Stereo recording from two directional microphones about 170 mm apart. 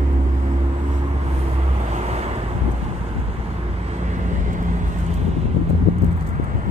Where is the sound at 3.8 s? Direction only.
40° right (ahead or behind).